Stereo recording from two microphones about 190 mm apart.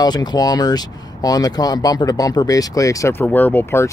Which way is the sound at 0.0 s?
20° left (ahead or behind).